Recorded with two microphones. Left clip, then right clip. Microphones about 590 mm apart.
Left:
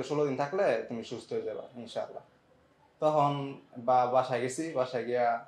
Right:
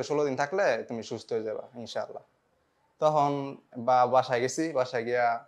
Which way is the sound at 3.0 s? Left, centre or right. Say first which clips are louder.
Right 2 dB; right.